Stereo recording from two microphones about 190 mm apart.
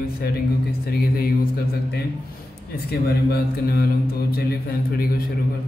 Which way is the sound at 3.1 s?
55° left (ahead or behind).